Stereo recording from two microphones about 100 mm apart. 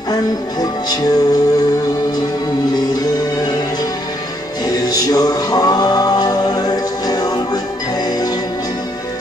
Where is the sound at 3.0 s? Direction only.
40° left (ahead or behind).